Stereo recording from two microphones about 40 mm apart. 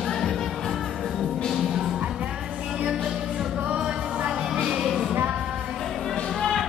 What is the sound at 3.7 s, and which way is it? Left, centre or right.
Music, right.